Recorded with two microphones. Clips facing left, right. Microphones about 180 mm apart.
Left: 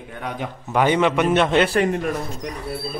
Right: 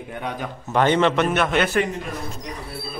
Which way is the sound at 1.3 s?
25° left (ahead or behind).